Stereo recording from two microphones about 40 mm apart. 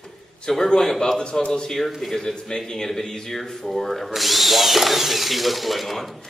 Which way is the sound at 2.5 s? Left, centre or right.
Centre.